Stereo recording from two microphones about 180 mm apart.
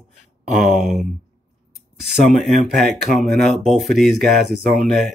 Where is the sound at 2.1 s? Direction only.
Centre (ahead or behind).